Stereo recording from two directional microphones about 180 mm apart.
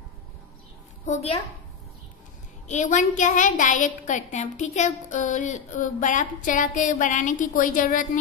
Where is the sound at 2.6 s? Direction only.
40° left (ahead or behind).